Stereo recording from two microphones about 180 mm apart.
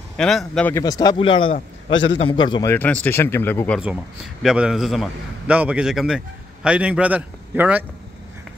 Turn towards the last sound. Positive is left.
turn(degrees=-10)  # may be behind; listen again after turning